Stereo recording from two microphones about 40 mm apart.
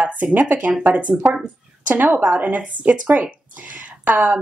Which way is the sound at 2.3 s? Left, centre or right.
Right.